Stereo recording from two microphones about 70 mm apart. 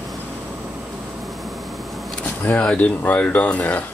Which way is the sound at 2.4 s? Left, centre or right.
Left.